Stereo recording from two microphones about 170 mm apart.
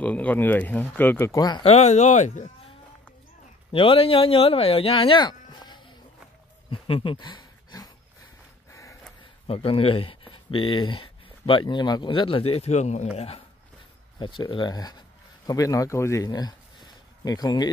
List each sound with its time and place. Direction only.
0.0 s speech: 10° left (ahead or behind)
1.6 s speech: 40° left (ahead or behind)
3.7 s speech: 30° left (ahead or behind)
6.7 s a sound: 30° left (ahead or behind)
9.5 s speech: 35° left (ahead or behind)
14.2 s speech: 30° left (ahead or behind)